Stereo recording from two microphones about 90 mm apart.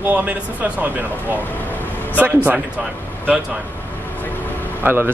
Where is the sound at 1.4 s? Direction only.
20° left (ahead or behind).